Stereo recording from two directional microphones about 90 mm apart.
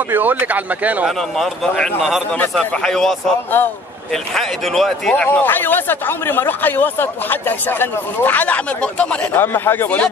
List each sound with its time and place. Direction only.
0.1 s speech: 20° right (ahead or behind)
1.0 s speech: centre (ahead or behind)
3.6 s speech: 25° left (ahead or behind)
4.1 s speech: 5° left (ahead or behind)
5.1 s speech: 15° left (ahead or behind)
9.3 s speech: 25° left (ahead or behind)